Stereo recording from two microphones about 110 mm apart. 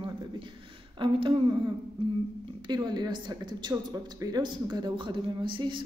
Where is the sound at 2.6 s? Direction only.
40° right (ahead or behind).